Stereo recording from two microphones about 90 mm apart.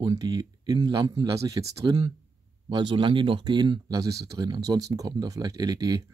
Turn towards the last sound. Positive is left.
turn(degrees=-45)  # may be behind; listen again after turning